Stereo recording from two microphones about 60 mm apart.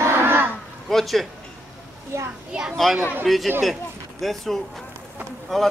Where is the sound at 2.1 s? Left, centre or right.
Right.